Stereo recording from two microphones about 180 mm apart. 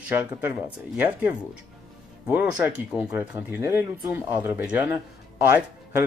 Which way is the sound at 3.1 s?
10° right (ahead or behind).